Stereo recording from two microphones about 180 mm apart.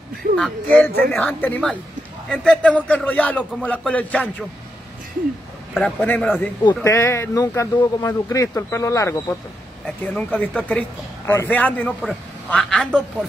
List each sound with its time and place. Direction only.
0.4 s speech: 5° left (ahead or behind)
5.8 s speech: 5° left (ahead or behind)